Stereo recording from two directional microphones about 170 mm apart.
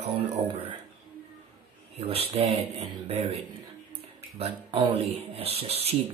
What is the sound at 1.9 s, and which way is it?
Speech, 35° right (ahead or behind).